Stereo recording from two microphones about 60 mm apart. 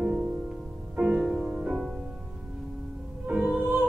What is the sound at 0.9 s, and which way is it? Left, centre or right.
Music, centre.